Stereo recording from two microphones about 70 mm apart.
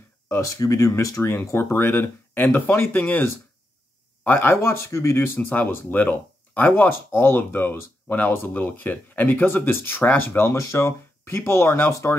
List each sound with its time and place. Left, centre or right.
0.4 s speech: left